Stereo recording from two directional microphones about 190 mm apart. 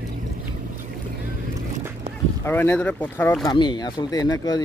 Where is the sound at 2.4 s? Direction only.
10° left (ahead or behind).